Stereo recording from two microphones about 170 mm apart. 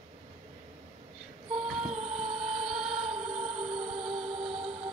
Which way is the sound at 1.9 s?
40° right (ahead or behind).